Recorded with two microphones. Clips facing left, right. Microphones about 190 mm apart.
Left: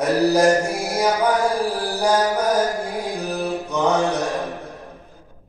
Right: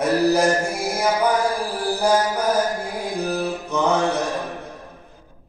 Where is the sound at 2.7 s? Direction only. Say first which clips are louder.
Left 1 dB; centre (ahead or behind).